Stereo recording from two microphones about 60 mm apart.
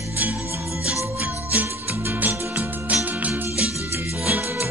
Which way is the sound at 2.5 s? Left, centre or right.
Right.